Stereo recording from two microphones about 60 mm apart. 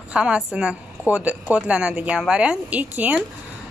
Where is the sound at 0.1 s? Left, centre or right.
Centre.